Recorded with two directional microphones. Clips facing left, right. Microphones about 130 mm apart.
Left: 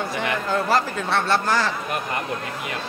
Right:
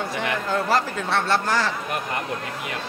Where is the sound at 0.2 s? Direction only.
20° left (ahead or behind).